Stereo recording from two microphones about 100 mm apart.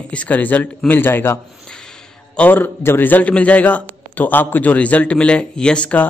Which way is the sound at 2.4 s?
20° left (ahead or behind).